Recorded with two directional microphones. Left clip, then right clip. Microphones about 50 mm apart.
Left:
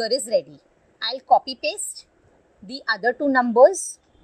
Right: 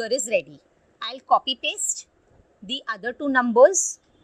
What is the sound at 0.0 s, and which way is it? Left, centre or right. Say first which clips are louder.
A woman's voice: left 2 dB; centre.